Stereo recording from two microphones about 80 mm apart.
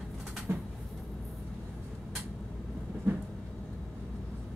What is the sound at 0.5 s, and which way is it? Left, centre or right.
Vehicle, right.